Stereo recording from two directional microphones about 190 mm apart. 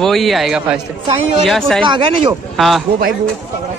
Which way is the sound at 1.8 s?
25° right (ahead or behind).